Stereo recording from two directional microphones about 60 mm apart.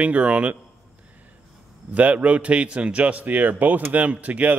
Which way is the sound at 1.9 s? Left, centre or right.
Right.